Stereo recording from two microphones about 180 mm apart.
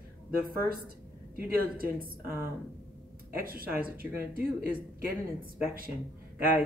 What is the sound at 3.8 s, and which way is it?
Speech, 10° right (ahead or behind).